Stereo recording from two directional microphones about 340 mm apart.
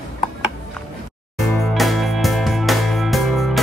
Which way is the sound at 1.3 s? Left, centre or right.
Centre.